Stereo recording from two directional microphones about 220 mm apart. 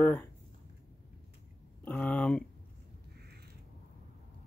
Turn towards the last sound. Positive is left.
turn(degrees=-45)  # may be behind; listen again after turning